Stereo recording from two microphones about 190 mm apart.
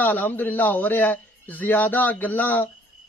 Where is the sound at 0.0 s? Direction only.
10° left (ahead or behind).